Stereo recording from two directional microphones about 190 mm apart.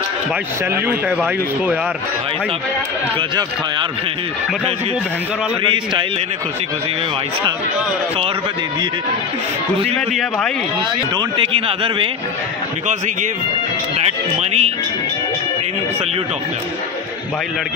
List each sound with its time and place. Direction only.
0.8 s speech: 5° right (ahead or behind)
5.6 s a man's voice: 25° right (ahead or behind)
9.9 s a man's voice: 5° left (ahead or behind)
11.1 s a man's voice: 25° right (ahead or behind)
13.9 s speech: 35° right (ahead or behind)